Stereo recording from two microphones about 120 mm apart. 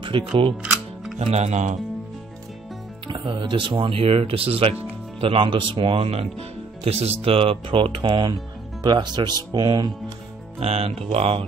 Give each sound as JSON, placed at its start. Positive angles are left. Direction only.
{"t": 0.0, "sound": "speech", "side_deg": -45}
{"t": 0.6, "sound": "music", "side_deg": -5}
{"t": 1.3, "sound": "speech", "side_deg": -70}
{"t": 3.1, "sound": "speech", "side_deg": -40}
{"t": 8.1, "sound": "speech", "side_deg": -35}
{"t": 10.6, "sound": "music", "side_deg": -60}